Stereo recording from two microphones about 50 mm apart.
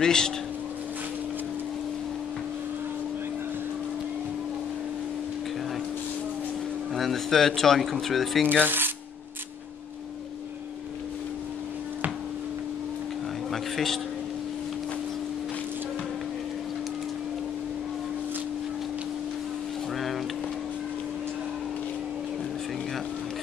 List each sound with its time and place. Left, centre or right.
0.0 s speech: centre
6.9 s speech: centre
8.5 s speech: right
13.5 s a sound: centre